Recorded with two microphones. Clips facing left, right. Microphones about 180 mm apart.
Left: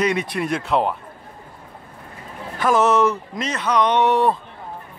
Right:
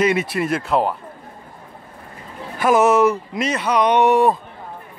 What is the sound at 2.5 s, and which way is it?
Speech, 10° right (ahead or behind).